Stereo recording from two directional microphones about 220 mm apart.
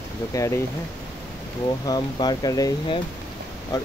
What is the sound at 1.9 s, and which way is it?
Speech, 20° left (ahead or behind).